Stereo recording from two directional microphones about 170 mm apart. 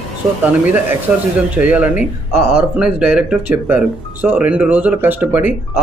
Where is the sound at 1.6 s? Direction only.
10° right (ahead or behind).